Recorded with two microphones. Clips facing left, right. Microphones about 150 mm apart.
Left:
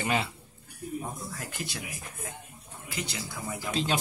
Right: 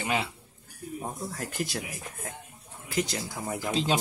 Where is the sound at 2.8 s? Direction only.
45° right (ahead or behind).